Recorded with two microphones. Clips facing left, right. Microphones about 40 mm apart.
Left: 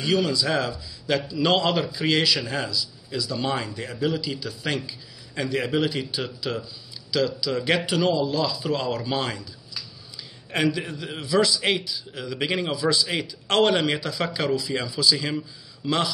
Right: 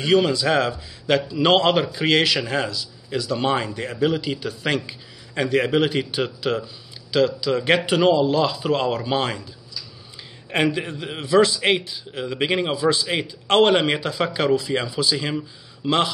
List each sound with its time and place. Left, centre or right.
0.0 s speech: right
10.5 s a man's voice: right